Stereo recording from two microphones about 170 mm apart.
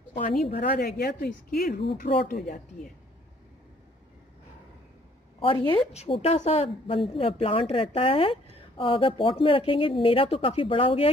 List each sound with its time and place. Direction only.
0.6 s speech: 70° left (ahead or behind)
5.4 s a woman's voice: 30° left (ahead or behind)